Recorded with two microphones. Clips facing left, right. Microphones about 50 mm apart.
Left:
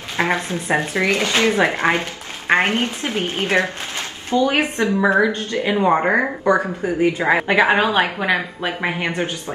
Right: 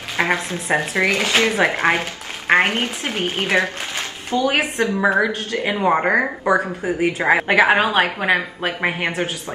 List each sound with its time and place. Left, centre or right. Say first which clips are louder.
0.2 s a woman's voice: even; centre
3.1 s speech: even; right
4.3 s speech: left 2 dB; right
5.0 s a woman's voice: left 2 dB; centre